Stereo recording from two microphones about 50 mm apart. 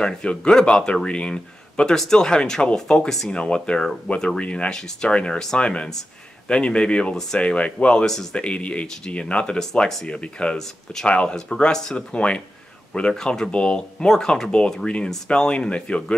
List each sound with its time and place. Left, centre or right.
0.0 s speech: centre
8.0 s speech: centre
8.4 s speech: left